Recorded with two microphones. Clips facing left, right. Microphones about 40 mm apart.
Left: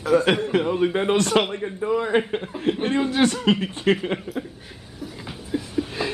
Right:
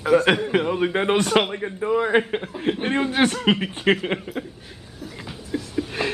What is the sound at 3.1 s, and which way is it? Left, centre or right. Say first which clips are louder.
Speech: right 1 dB; right.